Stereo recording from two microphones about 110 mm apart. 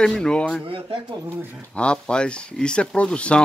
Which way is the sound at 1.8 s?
10° left (ahead or behind).